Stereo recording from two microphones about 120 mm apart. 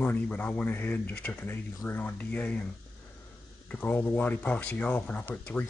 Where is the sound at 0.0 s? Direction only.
15° left (ahead or behind).